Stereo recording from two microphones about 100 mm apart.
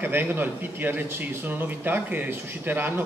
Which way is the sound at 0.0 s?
20° right (ahead or behind).